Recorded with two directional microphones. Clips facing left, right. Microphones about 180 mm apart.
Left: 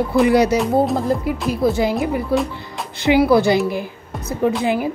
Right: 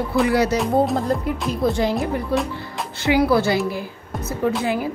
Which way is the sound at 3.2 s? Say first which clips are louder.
Left 4 dB; 15° left (ahead or behind).